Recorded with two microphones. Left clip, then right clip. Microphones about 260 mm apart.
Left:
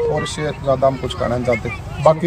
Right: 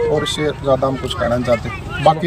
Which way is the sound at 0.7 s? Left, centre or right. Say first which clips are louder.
Left 2 dB; centre.